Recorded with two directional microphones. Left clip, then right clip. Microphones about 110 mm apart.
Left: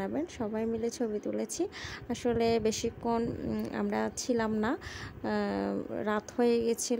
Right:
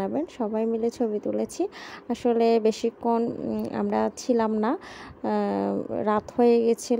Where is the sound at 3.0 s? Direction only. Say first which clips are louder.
Right 7 dB; 20° right (ahead or behind).